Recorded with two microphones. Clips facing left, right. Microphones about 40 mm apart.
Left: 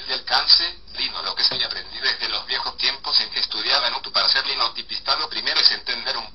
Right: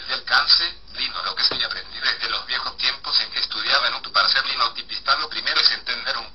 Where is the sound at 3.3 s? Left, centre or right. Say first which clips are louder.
Right 1 dB; centre.